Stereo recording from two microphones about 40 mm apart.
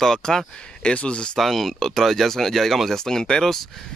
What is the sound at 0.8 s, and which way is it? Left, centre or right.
Speech, left.